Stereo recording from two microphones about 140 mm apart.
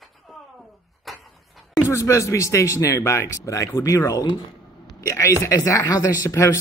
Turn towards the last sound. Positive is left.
turn(degrees=20)  # may be behind; listen again after turning